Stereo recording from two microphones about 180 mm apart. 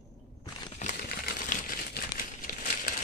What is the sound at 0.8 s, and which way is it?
Crumpling, 40° left (ahead or behind).